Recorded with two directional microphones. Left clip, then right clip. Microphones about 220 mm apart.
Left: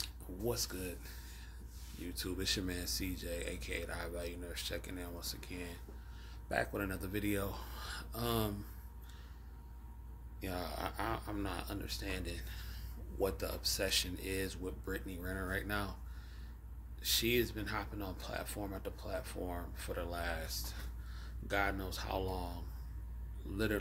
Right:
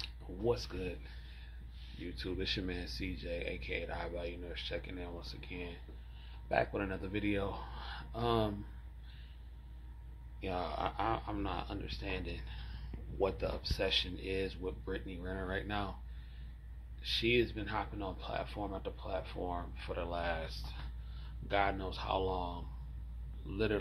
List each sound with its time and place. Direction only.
0.0 s a sound: 15° left (ahead or behind)
2.1 s speech: 20° left (ahead or behind)
10.4 s speech: 15° left (ahead or behind)
17.0 s speech: 20° left (ahead or behind)